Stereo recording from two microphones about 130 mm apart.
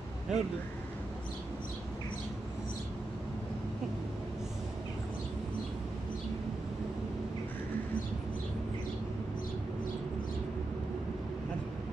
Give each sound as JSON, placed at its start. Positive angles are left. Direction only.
{"t": 0.3, "sound": "speech", "side_deg": 0}